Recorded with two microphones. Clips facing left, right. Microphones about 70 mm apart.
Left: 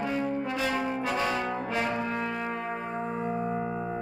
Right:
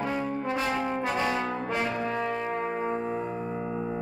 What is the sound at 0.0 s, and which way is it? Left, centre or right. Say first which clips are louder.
Brass instrument: even; right.